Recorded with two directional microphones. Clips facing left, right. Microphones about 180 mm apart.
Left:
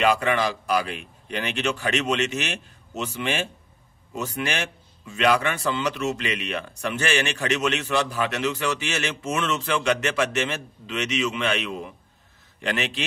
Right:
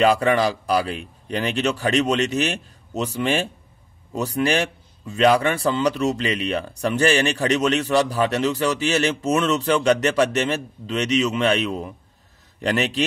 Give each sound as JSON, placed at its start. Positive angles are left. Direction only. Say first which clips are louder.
{"t": 0.0, "sound": "a man's voice", "louder": "right 4 dB", "side_deg": -35}